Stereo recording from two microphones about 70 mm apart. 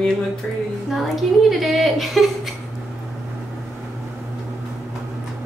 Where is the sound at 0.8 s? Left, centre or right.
Centre.